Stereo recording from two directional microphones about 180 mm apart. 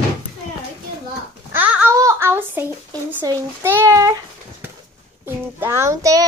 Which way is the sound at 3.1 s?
20° right (ahead or behind).